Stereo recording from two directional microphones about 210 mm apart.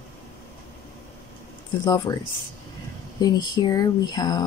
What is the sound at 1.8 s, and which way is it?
Speech, 20° left (ahead or behind).